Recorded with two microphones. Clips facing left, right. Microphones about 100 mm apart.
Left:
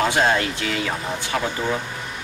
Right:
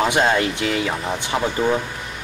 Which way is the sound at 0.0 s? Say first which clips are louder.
Right 1 dB; 20° right (ahead or behind).